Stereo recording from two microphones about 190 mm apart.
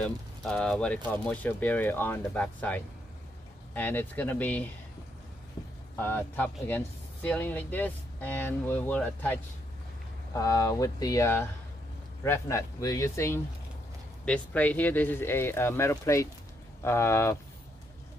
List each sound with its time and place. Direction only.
0.0 s speech: 5° left (ahead or behind)
5.9 s speech: 10° left (ahead or behind)